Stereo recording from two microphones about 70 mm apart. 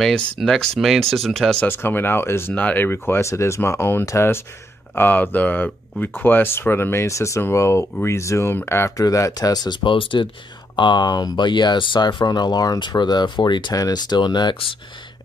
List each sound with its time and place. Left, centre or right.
0.4 s speech: centre
1.7 s speech: left
2.5 s speech: left
4.9 s speech: left
8.9 s speech: left
10.1 s speech: left
13.7 s speech: left